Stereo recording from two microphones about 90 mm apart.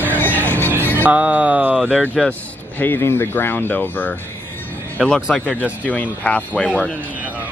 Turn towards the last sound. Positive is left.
turn(degrees=15)  # may be behind; listen again after turning